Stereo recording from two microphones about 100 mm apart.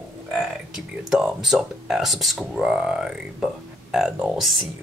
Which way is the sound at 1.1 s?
5° right (ahead or behind).